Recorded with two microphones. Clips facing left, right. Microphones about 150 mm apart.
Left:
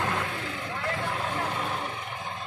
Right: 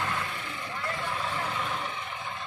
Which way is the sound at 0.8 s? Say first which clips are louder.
Left 2 dB; 60° left (ahead or behind).